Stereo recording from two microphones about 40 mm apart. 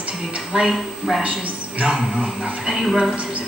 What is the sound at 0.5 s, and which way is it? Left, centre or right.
Speech, right.